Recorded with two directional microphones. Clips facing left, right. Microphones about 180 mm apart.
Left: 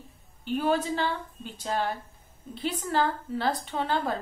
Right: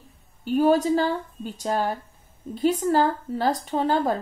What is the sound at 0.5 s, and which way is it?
A woman's voice, 40° right (ahead or behind).